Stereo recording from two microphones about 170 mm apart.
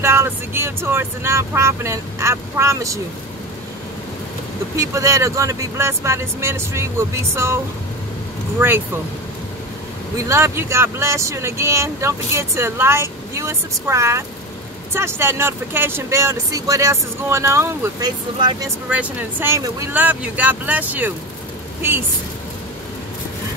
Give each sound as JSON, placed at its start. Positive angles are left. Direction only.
{"t": 0.0, "sound": "speech", "side_deg": -15}
{"t": 4.7, "sound": "speech", "side_deg": -15}
{"t": 8.5, "sound": "speech", "side_deg": -10}
{"t": 10.1, "sound": "speech", "side_deg": -15}
{"t": 18.4, "sound": "speech", "side_deg": -25}
{"t": 18.9, "sound": "speech", "side_deg": -10}